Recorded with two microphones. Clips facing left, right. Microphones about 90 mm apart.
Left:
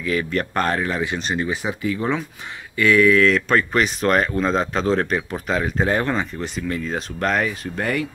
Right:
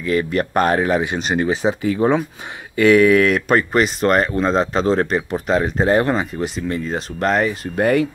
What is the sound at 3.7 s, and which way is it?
Speech, centre (ahead or behind).